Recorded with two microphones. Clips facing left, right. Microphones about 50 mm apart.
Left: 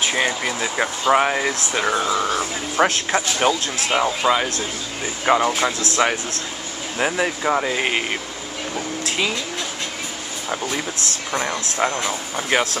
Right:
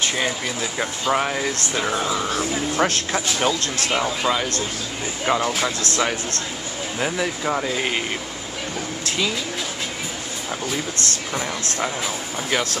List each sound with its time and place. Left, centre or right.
0.1 s speech: centre
1.5 s speech: centre
5.5 s speech: centre
7.0 s speech: centre
8.7 s speech: centre
11.8 s speech: left